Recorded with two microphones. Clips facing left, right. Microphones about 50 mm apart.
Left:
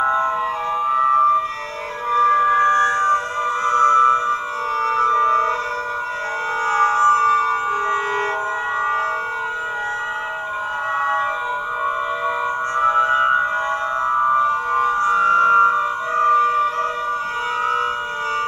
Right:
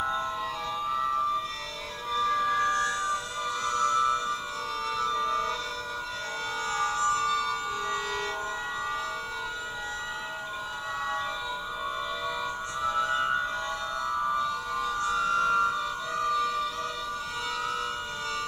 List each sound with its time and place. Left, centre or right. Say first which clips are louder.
0.0 s siren: left 12 dB; left
0.8 s music: left 13 dB; left
2.1 s siren: left 11 dB; left
3.6 s music: left 12 dB; left
6.7 s music: left 12 dB; left
12.7 s music: left 11 dB; left